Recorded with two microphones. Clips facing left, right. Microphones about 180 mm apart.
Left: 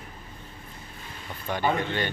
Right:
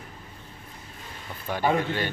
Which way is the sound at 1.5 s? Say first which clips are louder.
Right 2 dB; 5° right (ahead or behind).